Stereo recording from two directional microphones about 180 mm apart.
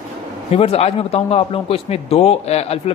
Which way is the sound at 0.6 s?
35° left (ahead or behind).